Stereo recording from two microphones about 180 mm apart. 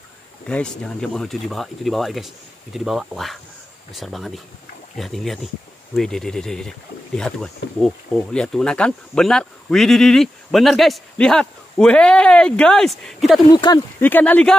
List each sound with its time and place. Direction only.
0.5 s speech: 5° left (ahead or behind)
7.8 s speech: 5° left (ahead or behind)
13.5 s speech: 20° left (ahead or behind)
14.0 s speech: 10° left (ahead or behind)